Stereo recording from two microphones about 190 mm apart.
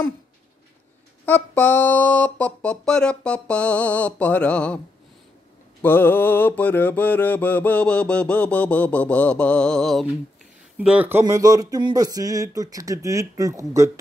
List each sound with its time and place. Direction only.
1.2 s mantra: 10° left (ahead or behind)
5.8 s mantra: 10° left (ahead or behind)
10.8 s speech: 5° right (ahead or behind)